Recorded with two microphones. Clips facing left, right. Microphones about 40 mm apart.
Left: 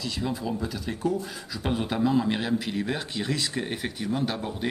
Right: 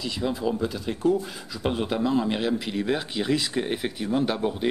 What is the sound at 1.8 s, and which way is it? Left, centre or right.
Speech, centre.